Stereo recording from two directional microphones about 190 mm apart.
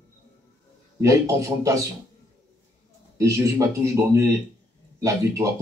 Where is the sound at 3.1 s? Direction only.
15° right (ahead or behind).